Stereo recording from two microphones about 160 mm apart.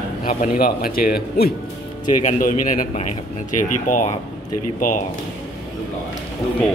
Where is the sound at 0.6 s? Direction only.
65° left (ahead or behind).